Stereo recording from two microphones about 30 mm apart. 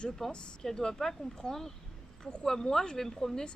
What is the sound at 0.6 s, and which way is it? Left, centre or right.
A woman's voice, centre.